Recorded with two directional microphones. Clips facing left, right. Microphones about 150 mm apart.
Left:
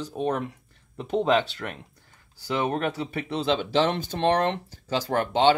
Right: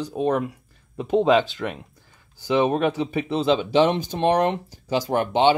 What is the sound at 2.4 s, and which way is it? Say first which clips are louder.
Speech: right 6 dB; 20° right (ahead or behind).